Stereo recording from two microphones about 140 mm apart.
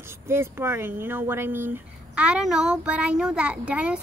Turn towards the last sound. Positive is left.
turn(degrees=-10)  # may be behind; listen again after turning